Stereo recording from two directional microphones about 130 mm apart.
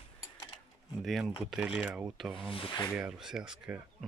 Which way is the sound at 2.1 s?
Centre (ahead or behind).